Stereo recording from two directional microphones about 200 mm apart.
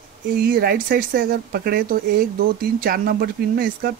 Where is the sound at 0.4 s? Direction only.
50° right (ahead or behind).